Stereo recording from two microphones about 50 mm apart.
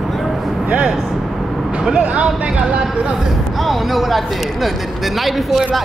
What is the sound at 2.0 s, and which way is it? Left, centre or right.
Speech, right.